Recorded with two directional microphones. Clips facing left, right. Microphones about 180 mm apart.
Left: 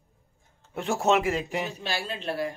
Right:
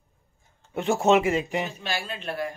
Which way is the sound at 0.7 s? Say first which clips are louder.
Right 3 dB; centre (ahead or behind).